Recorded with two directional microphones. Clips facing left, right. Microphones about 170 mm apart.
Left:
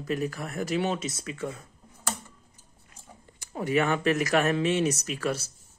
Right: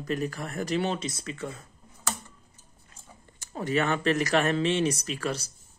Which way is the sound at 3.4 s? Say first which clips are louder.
Left 1 dB; 15° left (ahead or behind).